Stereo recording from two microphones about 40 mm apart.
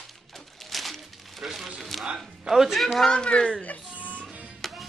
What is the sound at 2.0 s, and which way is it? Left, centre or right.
Speech, centre.